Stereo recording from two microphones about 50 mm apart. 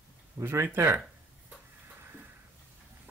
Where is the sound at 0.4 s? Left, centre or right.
Right.